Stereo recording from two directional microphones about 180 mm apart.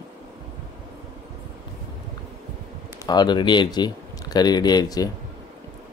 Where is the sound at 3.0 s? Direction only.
25° left (ahead or behind).